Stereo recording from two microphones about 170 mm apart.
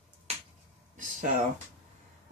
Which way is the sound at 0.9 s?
50° right (ahead or behind).